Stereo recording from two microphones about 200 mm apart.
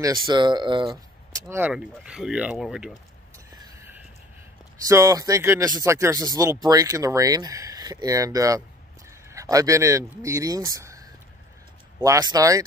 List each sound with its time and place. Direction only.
0.0 s speech: 20° right (ahead or behind); by 2.9 s 5° right (ahead or behind)
3.6 s a sound: 10° right (ahead or behind)
4.8 s speech: 15° right (ahead or behind)